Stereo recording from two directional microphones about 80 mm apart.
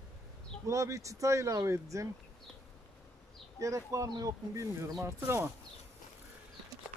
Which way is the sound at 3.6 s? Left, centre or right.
Right.